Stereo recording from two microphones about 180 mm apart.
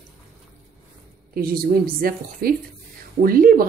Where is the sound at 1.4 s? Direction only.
55° right (ahead or behind).